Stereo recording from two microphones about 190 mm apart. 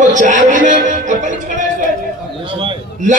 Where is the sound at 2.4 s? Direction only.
25° right (ahead or behind).